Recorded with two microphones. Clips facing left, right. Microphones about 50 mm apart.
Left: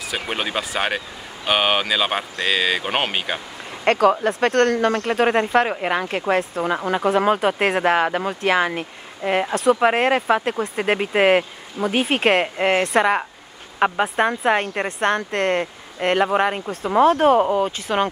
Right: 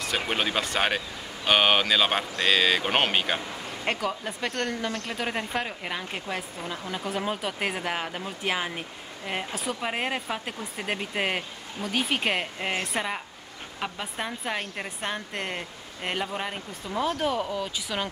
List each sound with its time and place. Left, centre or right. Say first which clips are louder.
0.0 s speech: left 2 dB; centre
3.8 s speech: left 13 dB; left
13.7 s speech: left 15 dB; left
14.0 s speech: left 13 dB; left